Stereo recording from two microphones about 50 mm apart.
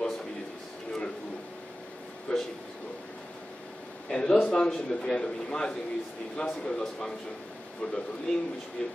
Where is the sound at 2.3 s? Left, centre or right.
Left.